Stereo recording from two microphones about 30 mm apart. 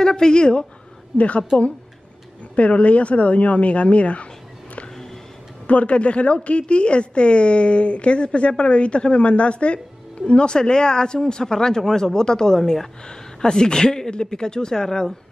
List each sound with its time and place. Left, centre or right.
0.0 s speech: left
1.1 s a woman's voice: left
2.5 s speech: left
5.7 s a woman's voice: left